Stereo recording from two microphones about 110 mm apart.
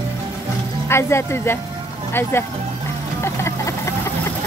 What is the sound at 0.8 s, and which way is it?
Speech, 25° left (ahead or behind).